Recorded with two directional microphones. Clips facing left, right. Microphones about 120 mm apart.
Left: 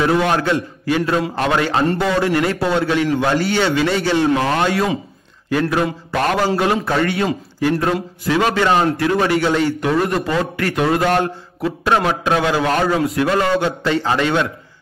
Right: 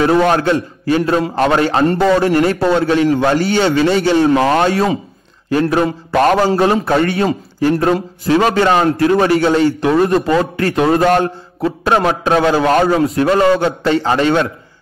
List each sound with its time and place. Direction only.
0.0 s a man's voice: 35° right (ahead or behind)